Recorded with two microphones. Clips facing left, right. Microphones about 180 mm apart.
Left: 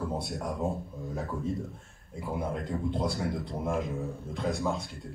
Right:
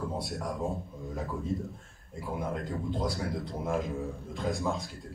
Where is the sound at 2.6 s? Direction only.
Centre (ahead or behind).